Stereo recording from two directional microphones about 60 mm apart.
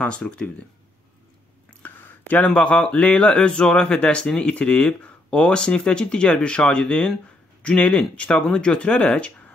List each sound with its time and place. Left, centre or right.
0.0 s speech: centre
1.7 s speech: left